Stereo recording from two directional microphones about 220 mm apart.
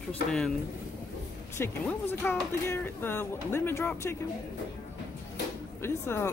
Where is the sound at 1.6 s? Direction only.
10° left (ahead or behind).